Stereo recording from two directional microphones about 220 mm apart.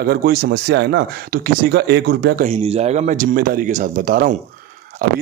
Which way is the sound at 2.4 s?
30° right (ahead or behind).